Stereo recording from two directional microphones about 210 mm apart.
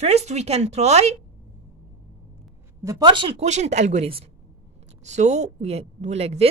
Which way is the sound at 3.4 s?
35° right (ahead or behind).